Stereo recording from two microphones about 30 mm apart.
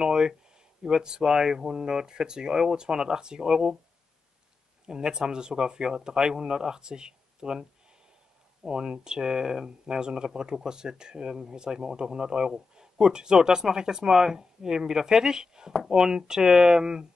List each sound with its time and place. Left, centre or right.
0.0 s speech: right
4.8 s speech: right
8.6 s speech: right